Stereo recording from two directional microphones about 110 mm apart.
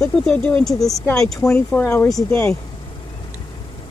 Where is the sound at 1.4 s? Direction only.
20° left (ahead or behind).